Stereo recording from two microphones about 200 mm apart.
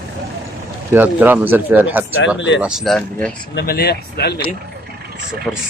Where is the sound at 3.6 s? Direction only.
50° left (ahead or behind).